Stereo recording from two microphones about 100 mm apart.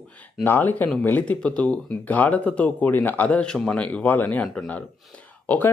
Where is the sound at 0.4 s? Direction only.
20° left (ahead or behind).